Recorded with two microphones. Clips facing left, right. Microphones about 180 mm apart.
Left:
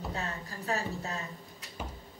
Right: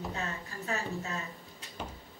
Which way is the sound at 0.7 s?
35° left (ahead or behind).